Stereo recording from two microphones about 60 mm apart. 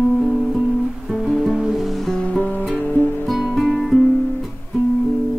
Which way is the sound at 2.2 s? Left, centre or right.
Left.